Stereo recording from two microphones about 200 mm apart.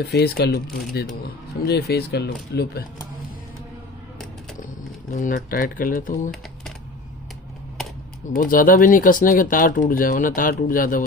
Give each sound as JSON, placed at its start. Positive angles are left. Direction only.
{"t": 0.0, "sound": "speech", "side_deg": 50}
{"t": 5.1, "sound": "speech", "side_deg": 45}
{"t": 8.4, "sound": "speech", "side_deg": 45}